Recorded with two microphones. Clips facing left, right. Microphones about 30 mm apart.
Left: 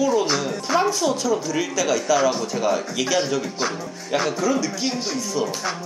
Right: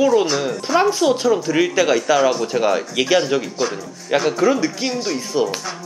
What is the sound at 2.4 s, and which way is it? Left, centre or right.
Speech, right.